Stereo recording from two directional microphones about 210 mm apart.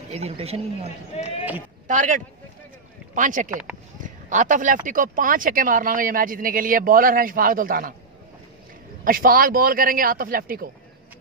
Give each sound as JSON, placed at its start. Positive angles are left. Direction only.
{"t": 0.1, "sound": "speech", "side_deg": -30}
{"t": 1.1, "sound": "speech", "side_deg": 30}
{"t": 1.9, "sound": "speech", "side_deg": -35}
{"t": 4.0, "sound": "a sound", "side_deg": -35}
{"t": 4.8, "sound": "speech", "side_deg": -40}
{"t": 9.0, "sound": "a man's voice", "side_deg": -45}